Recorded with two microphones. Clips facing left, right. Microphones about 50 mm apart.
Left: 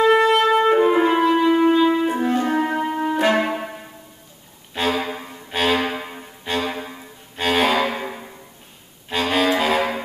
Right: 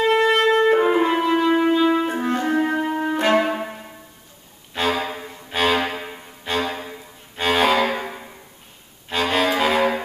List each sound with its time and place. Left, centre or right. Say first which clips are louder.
0.0 s music: left 2 dB; centre
4.7 s music: even; centre
9.1 s saxophone: left 1 dB; centre